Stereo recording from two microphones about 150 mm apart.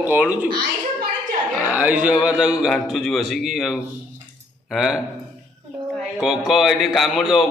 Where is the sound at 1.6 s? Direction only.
10° right (ahead or behind).